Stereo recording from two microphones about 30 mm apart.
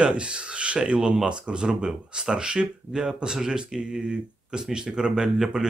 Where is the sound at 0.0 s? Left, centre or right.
Right.